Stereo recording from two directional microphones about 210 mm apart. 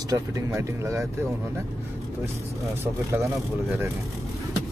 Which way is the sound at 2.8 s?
10° right (ahead or behind).